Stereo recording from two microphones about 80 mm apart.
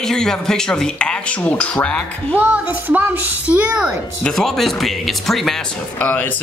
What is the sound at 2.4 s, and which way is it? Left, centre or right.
Speech, right.